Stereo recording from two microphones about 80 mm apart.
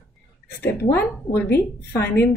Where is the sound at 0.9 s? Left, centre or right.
Left.